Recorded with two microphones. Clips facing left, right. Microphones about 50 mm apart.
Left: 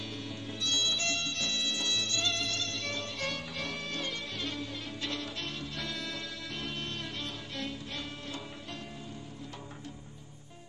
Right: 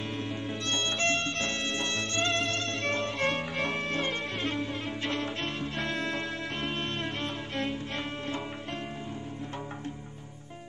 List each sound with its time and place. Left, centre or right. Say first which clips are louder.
0.2 s music: right 5 dB; right